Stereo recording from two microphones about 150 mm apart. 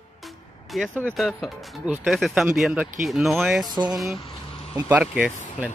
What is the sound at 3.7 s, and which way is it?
Speech, 25° right (ahead or behind).